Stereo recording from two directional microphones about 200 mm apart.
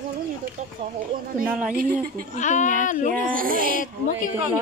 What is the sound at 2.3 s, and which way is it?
Speech, 35° left (ahead or behind).